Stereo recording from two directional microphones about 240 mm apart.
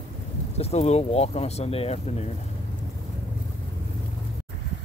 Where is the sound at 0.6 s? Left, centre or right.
Left.